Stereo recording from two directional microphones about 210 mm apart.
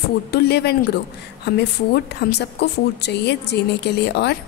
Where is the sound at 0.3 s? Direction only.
50° left (ahead or behind).